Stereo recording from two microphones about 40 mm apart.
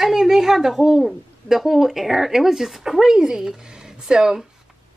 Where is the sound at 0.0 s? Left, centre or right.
Centre.